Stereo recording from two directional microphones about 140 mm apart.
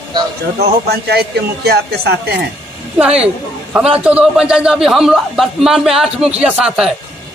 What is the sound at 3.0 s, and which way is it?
A man's voice, 5° right (ahead or behind).